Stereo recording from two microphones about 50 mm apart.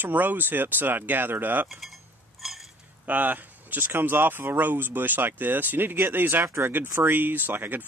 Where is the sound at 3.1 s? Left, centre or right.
Right.